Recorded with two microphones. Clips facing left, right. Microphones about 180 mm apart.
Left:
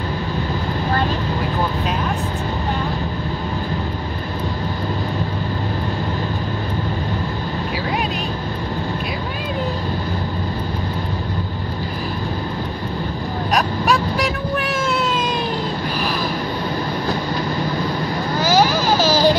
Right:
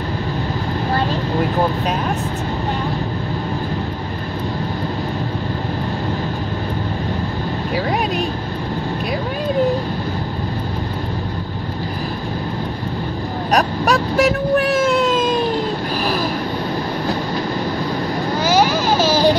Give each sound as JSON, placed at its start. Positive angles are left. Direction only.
{"t": 13.5, "sound": "vehicle", "side_deg": -40}
{"t": 14.9, "sound": "a sound", "side_deg": -45}
{"t": 18.4, "sound": "baby cry", "side_deg": -25}